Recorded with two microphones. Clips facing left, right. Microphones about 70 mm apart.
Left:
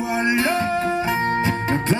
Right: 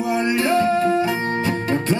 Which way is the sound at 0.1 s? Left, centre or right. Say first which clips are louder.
Right 1 dB; left.